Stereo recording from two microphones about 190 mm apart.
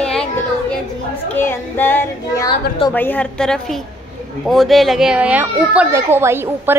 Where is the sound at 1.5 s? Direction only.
10° left (ahead or behind).